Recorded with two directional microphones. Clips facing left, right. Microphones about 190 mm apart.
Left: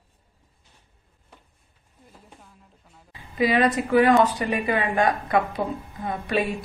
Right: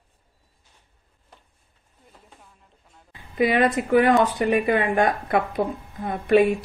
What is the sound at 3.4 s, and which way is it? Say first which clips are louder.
A woman's voice: right 1 dB; 55° right (ahead or behind).